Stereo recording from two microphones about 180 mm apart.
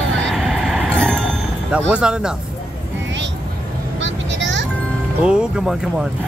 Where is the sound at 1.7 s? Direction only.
5° right (ahead or behind).